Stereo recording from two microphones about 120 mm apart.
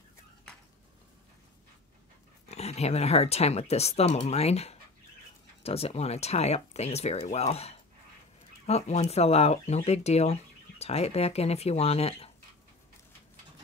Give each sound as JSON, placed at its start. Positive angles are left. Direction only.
{"t": 2.4, "sound": "speech", "side_deg": 65}